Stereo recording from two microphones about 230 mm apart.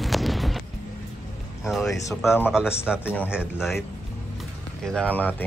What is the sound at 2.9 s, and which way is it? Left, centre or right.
Speech, centre.